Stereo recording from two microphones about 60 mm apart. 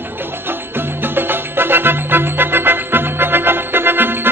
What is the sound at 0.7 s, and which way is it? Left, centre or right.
Music, right.